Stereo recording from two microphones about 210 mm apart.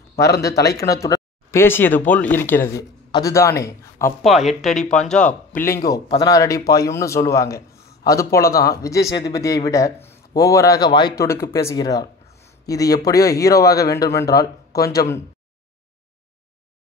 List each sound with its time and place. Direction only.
0.1 s speech: 50° left (ahead or behind)
0.8 s speech: 15° left (ahead or behind)
4.2 s speech: centre (ahead or behind)
5.9 s speech: 20° left (ahead or behind)
8.5 s speech: 45° left (ahead or behind)
8.8 s speech: 15° left (ahead or behind)